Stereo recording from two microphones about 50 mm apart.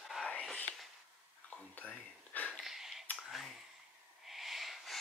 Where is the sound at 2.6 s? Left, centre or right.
Centre.